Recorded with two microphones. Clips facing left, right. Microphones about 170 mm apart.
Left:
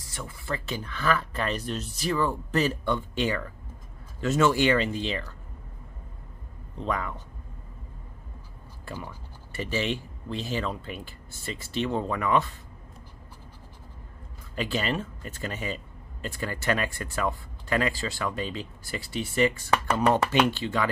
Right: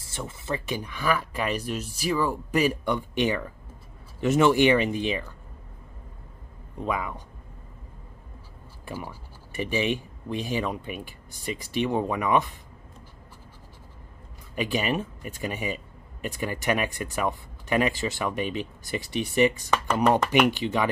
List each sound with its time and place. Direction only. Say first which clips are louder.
0.0 s speech: right 3 dB; 25° right (ahead or behind)
6.8 s speech: right 1 dB; 10° right (ahead or behind)
8.8 s speech: right 2 dB; 15° right (ahead or behind)
14.5 s speech: right 2 dB; 15° right (ahead or behind)